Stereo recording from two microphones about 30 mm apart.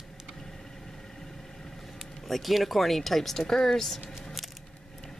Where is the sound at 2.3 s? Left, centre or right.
Centre.